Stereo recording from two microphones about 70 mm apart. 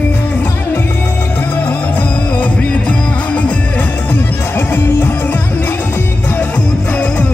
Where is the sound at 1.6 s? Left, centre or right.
Left.